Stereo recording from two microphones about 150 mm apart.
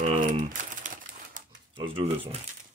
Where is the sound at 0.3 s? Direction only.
60° right (ahead or behind).